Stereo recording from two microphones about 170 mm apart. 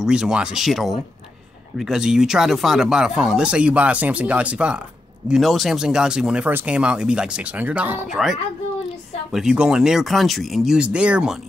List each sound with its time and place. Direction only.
0.0 s speech: 5° right (ahead or behind)